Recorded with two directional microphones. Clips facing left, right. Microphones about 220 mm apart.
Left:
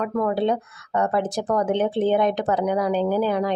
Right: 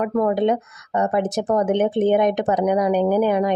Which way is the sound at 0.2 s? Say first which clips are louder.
Right 3 dB; 20° right (ahead or behind).